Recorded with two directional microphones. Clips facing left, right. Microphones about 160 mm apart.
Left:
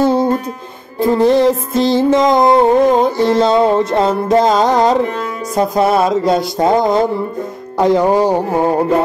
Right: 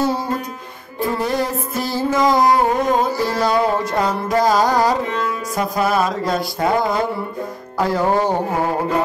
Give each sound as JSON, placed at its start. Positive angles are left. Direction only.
{"t": 0.0, "sound": "music", "side_deg": 25}
{"t": 7.8, "sound": "speech", "side_deg": 20}